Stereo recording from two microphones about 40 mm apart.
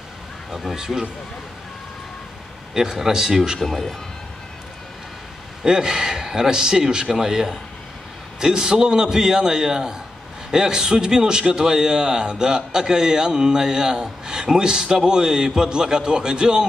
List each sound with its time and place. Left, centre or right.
0.7 s a man's voice: centre
2.7 s a man's voice: centre
3.5 s speech: centre
5.6 s a man's voice: centre